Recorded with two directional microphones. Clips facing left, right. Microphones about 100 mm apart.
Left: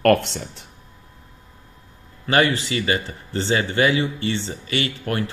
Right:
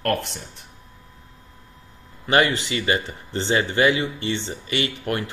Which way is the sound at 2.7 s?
25° right (ahead or behind).